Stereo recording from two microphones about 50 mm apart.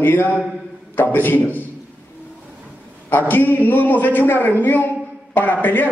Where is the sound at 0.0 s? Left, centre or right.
Left.